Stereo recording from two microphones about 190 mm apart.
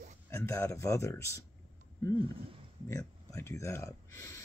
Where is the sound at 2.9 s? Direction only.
15° left (ahead or behind).